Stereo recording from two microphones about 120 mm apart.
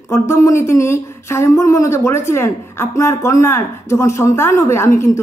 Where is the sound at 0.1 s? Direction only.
25° left (ahead or behind).